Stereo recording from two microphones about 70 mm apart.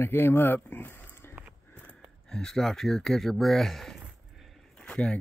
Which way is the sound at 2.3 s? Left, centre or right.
Centre.